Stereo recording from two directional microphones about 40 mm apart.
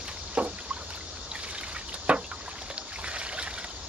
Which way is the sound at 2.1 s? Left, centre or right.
Right.